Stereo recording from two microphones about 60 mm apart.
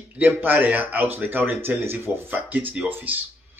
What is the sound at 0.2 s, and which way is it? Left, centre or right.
Speech, right.